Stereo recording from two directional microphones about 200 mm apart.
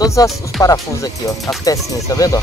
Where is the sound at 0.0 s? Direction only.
15° left (ahead or behind).